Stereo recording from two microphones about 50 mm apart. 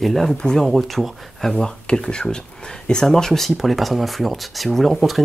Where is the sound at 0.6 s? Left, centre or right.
Centre.